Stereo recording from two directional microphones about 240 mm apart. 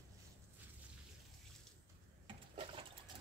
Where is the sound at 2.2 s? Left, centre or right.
Right.